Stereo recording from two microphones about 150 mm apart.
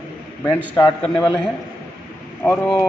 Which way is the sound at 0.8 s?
25° left (ahead or behind).